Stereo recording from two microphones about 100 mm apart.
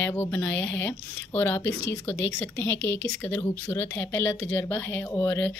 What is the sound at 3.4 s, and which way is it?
Speech, 30° left (ahead or behind).